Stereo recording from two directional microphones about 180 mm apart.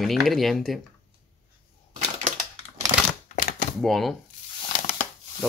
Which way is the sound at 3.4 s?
50° left (ahead or behind).